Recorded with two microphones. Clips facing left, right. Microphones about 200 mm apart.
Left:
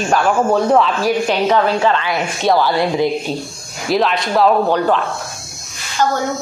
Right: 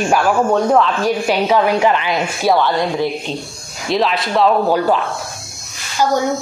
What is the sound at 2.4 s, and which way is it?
Speech, centre (ahead or behind).